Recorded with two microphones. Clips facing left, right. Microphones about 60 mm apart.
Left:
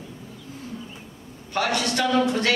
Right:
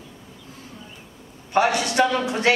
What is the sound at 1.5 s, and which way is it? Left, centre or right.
Speech, right.